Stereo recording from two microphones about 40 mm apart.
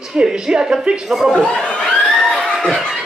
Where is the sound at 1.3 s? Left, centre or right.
Left.